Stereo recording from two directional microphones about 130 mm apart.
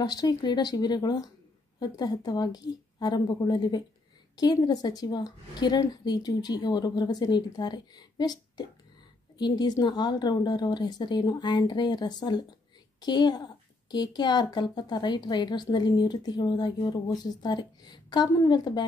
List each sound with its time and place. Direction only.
0.0 s a woman's voice: 30° left (ahead or behind)